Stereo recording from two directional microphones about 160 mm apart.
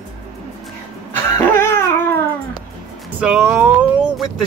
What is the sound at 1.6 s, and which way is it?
Dog, 15° left (ahead or behind).